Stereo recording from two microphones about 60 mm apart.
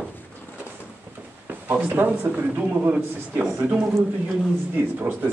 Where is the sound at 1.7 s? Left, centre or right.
Right.